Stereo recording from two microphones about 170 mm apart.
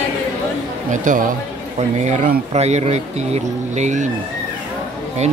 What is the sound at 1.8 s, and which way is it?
Speech, 40° right (ahead or behind).